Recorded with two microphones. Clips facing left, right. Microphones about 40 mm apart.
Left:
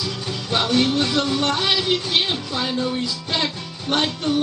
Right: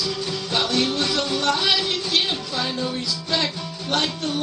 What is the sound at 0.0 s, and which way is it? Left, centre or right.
Music, centre.